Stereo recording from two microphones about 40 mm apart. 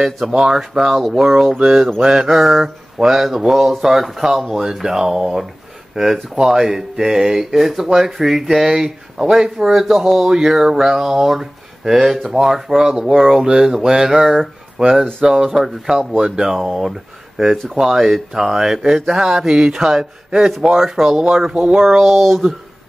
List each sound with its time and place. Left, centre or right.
0.4 s speech: centre
21.7 s speech: centre